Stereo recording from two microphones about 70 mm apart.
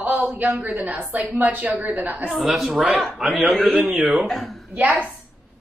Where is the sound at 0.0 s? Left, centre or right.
Right.